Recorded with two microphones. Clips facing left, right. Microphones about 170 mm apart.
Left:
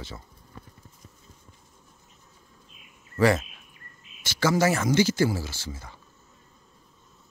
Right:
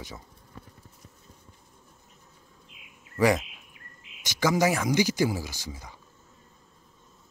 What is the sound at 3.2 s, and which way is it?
Insect, 15° right (ahead or behind).